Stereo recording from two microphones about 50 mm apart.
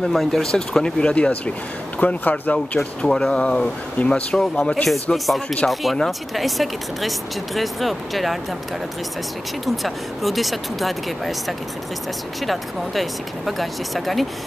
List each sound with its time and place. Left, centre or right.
0.0 s speech: centre; by 2.8 s left
2.8 s speech: centre
5.1 s speech: centre
9.7 s speech: centre